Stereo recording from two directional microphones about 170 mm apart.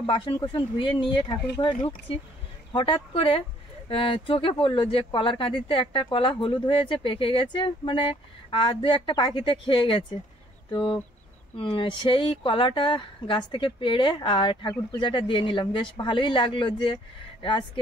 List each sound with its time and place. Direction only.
0.0 s speech: 30° left (ahead or behind)